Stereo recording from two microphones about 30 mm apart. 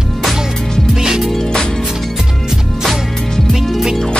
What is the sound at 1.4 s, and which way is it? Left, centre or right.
Music, left.